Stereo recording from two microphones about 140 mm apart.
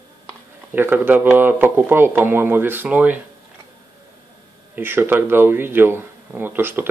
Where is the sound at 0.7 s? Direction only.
15° right (ahead or behind).